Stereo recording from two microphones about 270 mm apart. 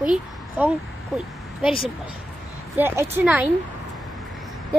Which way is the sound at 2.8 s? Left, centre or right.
Centre.